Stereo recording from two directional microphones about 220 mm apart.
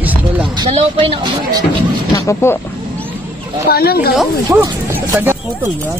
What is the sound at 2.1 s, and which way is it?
Speech, 10° left (ahead or behind).